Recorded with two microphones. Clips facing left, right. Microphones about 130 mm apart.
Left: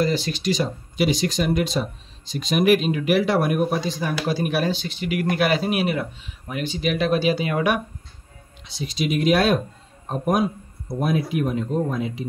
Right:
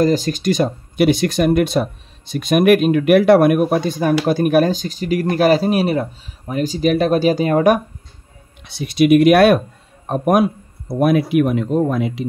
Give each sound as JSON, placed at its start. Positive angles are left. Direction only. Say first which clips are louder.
{"t": 0.0, "sound": "speech", "louder": "right 6 dB", "side_deg": -45}
{"t": 8.6, "sound": "speech", "louder": "right 12 dB", "side_deg": -65}